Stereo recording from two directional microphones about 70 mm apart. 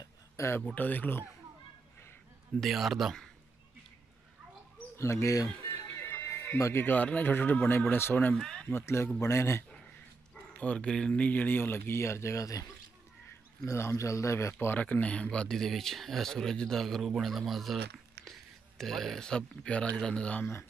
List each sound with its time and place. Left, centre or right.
0.4 s a man's voice: left
0.7 s speech: left
2.6 s speech: centre
4.9 s speech: left
5.9 s music: left
6.6 s speech: left
6.9 s speech: left
8.4 s speech: centre
8.6 s a man's voice: left
10.6 s speech: centre; by 12.6 s left
13.7 s a man's voice: left
14.8 s speech: left